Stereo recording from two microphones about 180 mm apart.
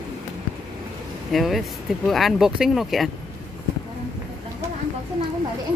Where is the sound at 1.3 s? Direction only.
Centre (ahead or behind).